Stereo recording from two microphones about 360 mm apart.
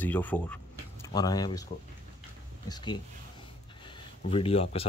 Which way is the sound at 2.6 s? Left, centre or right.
Centre.